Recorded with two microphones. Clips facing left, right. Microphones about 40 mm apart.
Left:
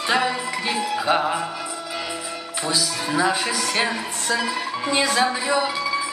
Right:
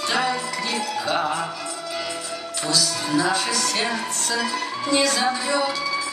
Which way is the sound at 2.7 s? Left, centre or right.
Centre.